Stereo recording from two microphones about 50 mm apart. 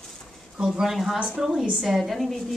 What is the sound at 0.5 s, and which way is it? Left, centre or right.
Speech, centre.